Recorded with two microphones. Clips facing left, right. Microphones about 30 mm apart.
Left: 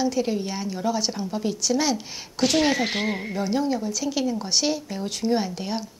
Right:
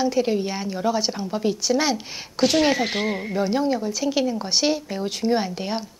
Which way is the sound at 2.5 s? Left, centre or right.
Centre.